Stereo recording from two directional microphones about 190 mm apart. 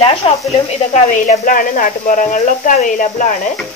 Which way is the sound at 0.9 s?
45° left (ahead or behind).